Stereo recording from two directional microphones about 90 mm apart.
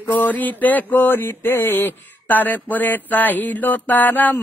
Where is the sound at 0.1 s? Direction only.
20° left (ahead or behind).